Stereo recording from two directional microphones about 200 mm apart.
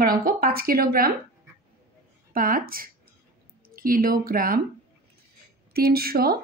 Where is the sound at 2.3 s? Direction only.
45° right (ahead or behind).